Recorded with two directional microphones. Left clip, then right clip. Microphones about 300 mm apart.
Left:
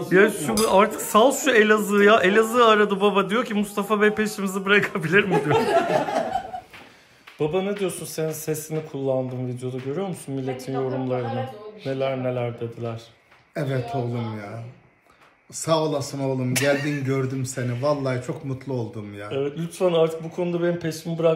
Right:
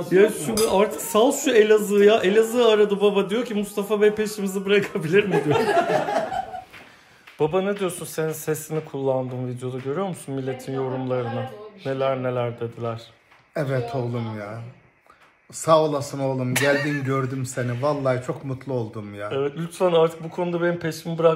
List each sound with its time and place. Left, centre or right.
0.0 s speech: centre
7.5 s speech: centre
8.7 s speech: centre
9.3 s speech: centre
15.5 s speech: centre